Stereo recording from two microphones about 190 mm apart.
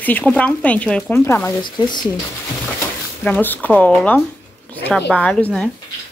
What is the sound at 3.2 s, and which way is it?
Speech, 10° left (ahead or behind).